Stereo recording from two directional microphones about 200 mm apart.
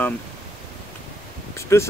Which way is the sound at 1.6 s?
15° left (ahead or behind).